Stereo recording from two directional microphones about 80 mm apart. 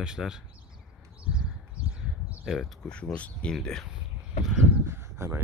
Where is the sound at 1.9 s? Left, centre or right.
Centre.